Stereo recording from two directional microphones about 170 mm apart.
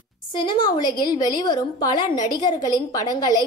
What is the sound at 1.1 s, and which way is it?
A woman's voice, 25° left (ahead or behind).